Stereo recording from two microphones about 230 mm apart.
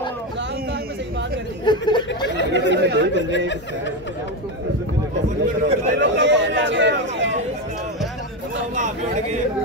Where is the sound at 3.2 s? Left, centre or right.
Left.